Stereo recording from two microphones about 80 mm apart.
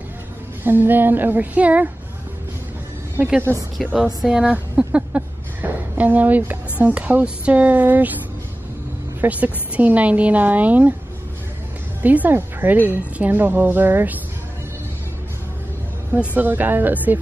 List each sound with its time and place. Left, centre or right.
0.7 s a woman's voice: right
3.2 s a woman's voice: centre
9.2 s a woman's voice: centre
12.0 s a woman's voice: right
16.1 s a woman's voice: right